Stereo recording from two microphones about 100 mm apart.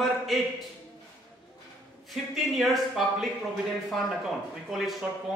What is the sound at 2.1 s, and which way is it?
Speech, centre (ahead or behind).